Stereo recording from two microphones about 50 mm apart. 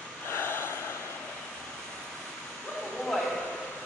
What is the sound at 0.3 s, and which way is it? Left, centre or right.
Gasp, left.